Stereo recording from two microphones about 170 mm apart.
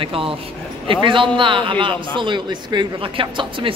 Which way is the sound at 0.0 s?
30° right (ahead or behind).